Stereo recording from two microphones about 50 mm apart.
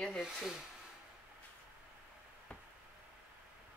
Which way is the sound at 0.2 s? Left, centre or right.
Centre.